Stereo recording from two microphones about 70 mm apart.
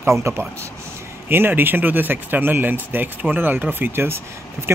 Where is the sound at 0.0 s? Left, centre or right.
Right.